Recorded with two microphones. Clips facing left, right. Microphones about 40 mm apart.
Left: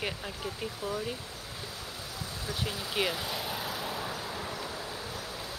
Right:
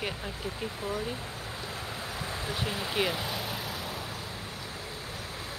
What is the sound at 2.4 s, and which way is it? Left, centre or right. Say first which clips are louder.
Speech: right 1 dB; right.